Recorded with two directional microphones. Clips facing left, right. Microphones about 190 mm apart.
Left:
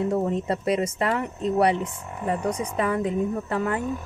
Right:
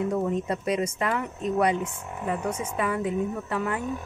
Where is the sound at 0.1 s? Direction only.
30° left (ahead or behind).